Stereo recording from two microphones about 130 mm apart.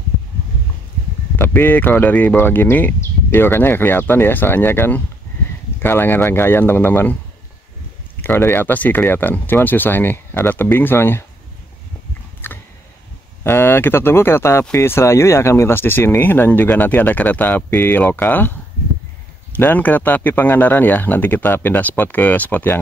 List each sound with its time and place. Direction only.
1.4 s speech: 15° left (ahead or behind)
8.2 s speech: 15° left (ahead or behind)
13.4 s speech: 15° left (ahead or behind)